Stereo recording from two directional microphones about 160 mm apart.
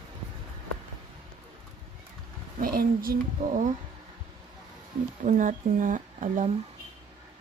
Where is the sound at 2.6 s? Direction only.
65° right (ahead or behind).